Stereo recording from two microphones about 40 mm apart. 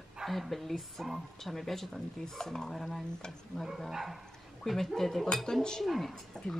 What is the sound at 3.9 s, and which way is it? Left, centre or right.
Speech, centre.